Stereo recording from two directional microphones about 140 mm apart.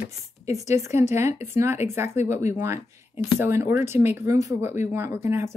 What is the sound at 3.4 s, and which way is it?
Speech, 15° right (ahead or behind).